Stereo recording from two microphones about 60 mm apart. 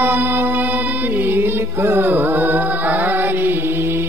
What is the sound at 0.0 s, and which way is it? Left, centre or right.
Music, right.